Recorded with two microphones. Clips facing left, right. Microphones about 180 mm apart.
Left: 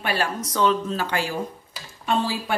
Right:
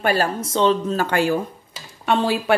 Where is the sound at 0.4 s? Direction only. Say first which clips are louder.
Right 3 dB; 25° right (ahead or behind).